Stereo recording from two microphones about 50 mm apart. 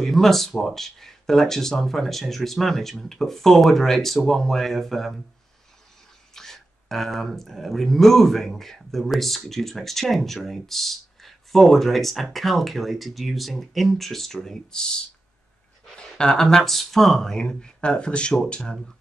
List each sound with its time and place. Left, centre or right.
0.0 s speech: centre
6.3 s speech: centre
16.0 s speech: centre